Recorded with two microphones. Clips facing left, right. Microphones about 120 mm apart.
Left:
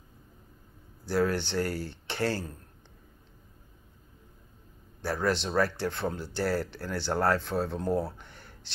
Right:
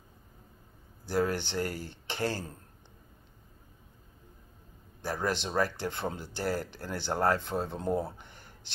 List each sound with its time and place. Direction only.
1.0 s speech: 15° right (ahead or behind)
5.0 s speech: 15° right (ahead or behind)
8.0 s a sound: 15° right (ahead or behind)